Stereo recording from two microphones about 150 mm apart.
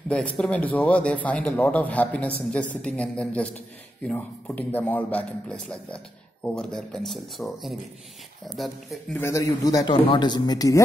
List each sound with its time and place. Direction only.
0.1 s a man's voice: 5° left (ahead or behind)
9.2 s speech: 20° left (ahead or behind)